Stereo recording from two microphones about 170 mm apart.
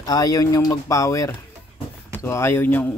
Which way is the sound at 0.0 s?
20° left (ahead or behind).